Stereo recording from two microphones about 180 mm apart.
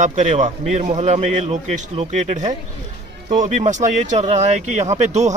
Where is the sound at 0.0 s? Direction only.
40° right (ahead or behind).